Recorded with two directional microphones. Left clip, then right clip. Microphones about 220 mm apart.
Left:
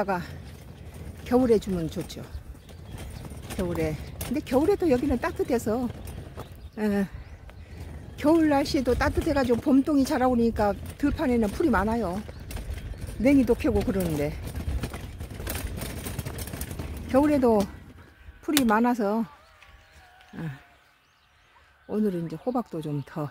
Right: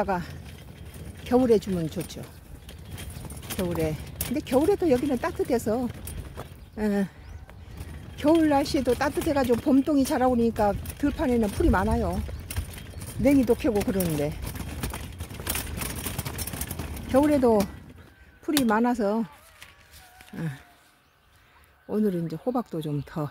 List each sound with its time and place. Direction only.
0.0 s speech: 5° right (ahead or behind)
3.5 s speech: 5° right (ahead or behind)
8.2 s speech: centre (ahead or behind)
13.5 s speech: 5° right (ahead or behind)
14.6 s vehicle: 45° right (ahead or behind)
17.1 s speech: centre (ahead or behind)
20.3 s a sound: 15° right (ahead or behind)
21.8 s speech: 5° right (ahead or behind)